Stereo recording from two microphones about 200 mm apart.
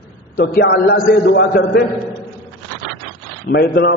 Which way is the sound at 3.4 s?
55° left (ahead or behind).